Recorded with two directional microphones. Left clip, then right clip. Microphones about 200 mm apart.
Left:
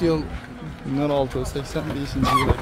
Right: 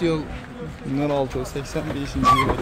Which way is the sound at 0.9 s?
Centre (ahead or behind).